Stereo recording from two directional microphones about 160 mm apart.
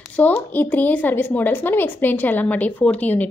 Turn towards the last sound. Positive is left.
turn(degrees=10)  # may be behind; listen again after turning